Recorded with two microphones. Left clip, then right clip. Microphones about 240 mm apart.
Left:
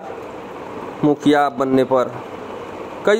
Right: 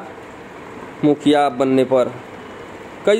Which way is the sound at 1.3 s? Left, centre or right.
Centre.